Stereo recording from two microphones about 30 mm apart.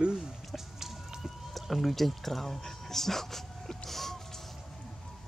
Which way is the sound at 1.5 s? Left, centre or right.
Centre.